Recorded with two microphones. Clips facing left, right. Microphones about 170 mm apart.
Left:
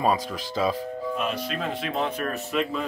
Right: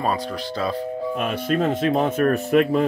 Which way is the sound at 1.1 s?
55° right (ahead or behind).